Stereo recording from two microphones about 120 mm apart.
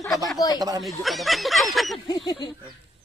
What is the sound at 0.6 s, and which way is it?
Speech, 30° right (ahead or behind).